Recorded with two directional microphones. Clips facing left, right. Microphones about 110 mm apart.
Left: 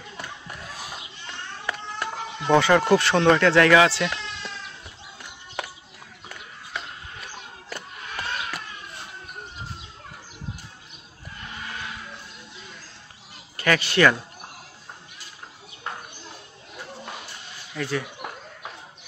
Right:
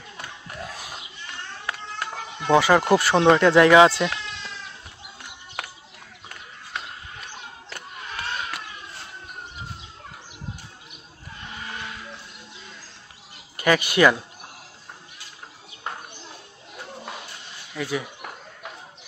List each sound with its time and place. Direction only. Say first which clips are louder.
2.4 s speech: right 1 dB; 10° right (ahead or behind)
13.6 s speech: right 2 dB; 15° right (ahead or behind)
17.7 s speech: even; 15° right (ahead or behind)